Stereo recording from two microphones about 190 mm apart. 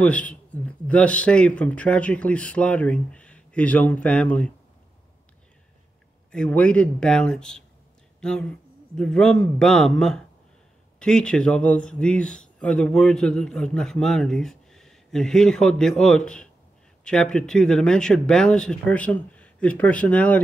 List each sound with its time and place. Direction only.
0.0 s a man's voice: 5° left (ahead or behind)
6.3 s a man's voice: 5° left (ahead or behind)